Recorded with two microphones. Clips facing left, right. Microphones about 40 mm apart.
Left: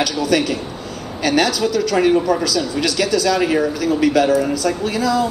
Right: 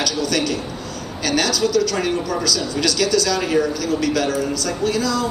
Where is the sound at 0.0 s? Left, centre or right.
Centre.